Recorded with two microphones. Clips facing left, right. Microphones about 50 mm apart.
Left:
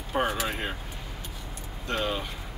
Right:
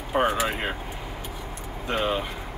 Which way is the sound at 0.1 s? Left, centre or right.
Right.